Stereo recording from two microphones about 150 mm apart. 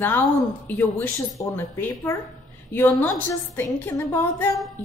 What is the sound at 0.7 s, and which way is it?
Speech, 10° left (ahead or behind).